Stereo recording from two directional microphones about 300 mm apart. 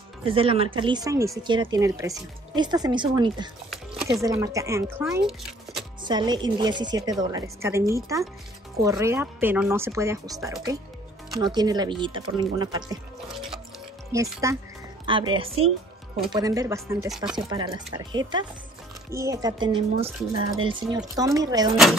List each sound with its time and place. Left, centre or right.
0.2 s speech: centre
6.0 s speech: centre
14.1 s speech: centre
17.5 s speech: centre